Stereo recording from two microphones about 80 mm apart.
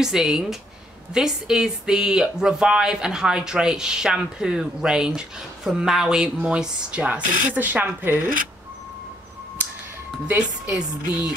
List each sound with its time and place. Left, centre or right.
0.0 s speech: centre; by 8.2 s right
10.7 s speech: centre